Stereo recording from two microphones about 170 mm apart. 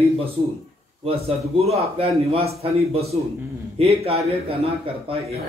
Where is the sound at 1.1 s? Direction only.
35° right (ahead or behind).